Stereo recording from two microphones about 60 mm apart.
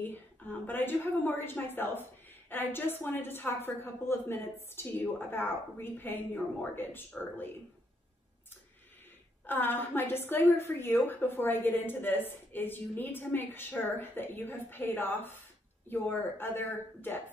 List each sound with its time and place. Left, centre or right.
0.0 s a woman's voice: left
9.5 s a woman's voice: left